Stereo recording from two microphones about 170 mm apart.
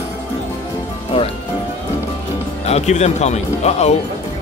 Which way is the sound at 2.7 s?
40° left (ahead or behind).